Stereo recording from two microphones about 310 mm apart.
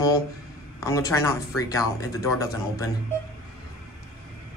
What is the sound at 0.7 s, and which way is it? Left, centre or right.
Speech, centre.